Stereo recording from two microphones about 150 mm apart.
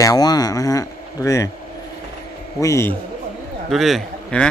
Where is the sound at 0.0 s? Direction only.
25° left (ahead or behind).